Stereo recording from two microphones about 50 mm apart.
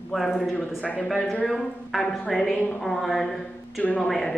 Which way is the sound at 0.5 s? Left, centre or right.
Left.